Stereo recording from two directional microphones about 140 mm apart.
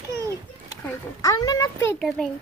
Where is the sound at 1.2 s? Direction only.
25° left (ahead or behind).